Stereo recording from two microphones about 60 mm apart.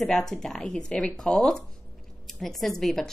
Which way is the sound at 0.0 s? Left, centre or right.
Centre.